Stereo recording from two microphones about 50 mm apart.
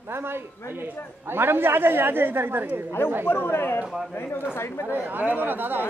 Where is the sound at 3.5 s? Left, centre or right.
Left.